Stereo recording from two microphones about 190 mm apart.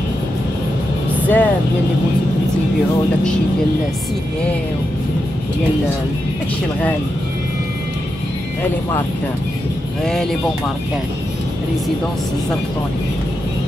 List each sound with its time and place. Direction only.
1.2 s vehicle: 10° left (ahead or behind)